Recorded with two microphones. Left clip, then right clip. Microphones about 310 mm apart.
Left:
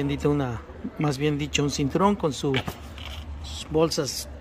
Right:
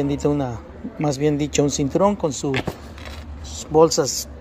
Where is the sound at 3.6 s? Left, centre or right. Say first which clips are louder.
Right 8 dB; centre.